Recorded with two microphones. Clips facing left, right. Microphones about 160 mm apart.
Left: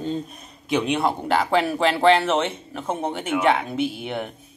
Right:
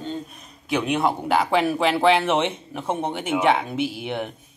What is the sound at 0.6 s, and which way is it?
A man's voice, 5° right (ahead or behind).